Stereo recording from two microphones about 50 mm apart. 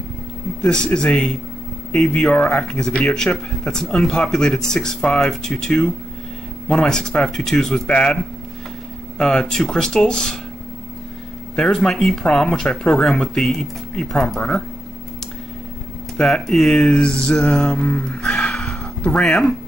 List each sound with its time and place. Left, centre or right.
0.6 s speech: centre
6.7 s speech: centre
9.2 s speech: centre
11.5 s speech: centre
16.2 s a sound: centre